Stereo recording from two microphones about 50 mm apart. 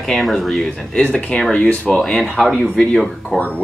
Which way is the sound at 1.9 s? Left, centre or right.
Centre.